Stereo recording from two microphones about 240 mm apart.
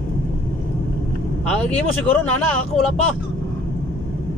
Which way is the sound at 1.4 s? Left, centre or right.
Centre.